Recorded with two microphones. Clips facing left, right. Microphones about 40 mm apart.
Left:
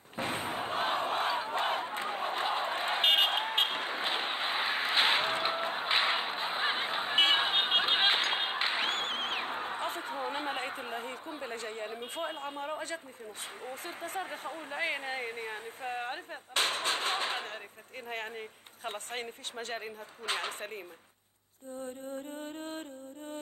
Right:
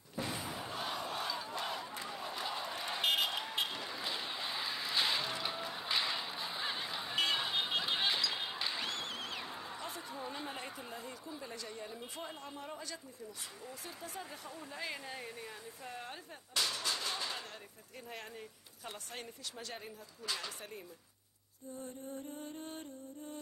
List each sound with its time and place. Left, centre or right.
0.1 s battle cry: left
13.7 s speech: left
18.9 s a woman's voice: left
20.2 s music: left